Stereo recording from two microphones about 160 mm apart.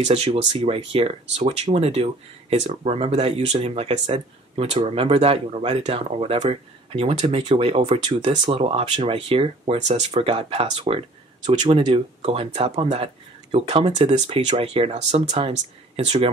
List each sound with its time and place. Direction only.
0.0 s speech: 35° right (ahead or behind)